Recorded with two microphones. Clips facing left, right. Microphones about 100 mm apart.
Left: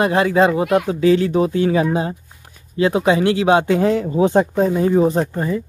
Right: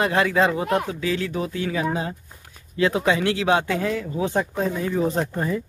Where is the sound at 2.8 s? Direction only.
20° left (ahead or behind).